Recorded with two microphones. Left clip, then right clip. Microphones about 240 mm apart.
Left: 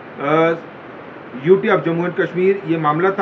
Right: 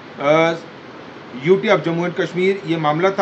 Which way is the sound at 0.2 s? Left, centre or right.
Centre.